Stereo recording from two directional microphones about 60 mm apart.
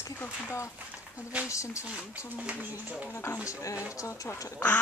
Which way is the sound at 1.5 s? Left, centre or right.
Left.